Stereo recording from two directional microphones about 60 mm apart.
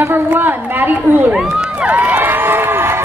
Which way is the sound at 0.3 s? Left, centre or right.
Right.